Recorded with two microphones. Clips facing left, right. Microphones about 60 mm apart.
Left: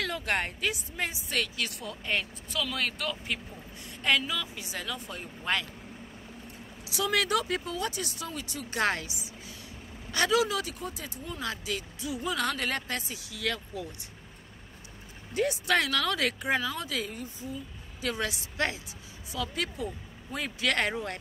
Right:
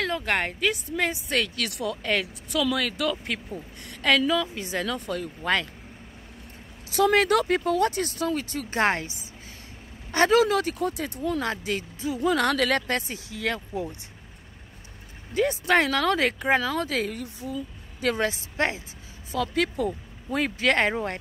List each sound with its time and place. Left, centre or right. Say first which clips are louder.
0.0 s a woman's voice: right 4 dB; right
3.8 s a woman's voice: right 5 dB; right
6.9 s speech: right 7 dB; right
8.7 s speech: right 5 dB; right
11.4 s speech: right 6 dB; right
12.2 s a woman's voice: right 8 dB; right
13.3 s speech: right 4 dB; right
15.3 s speech: right 5 dB; right
17.1 s speech: right 5 dB; right
18.0 s speech: right 7 dB; right
18.3 s speech: right 4 dB; right
19.3 s speech: right 8 dB; right
20.6 s speech: right 5 dB; right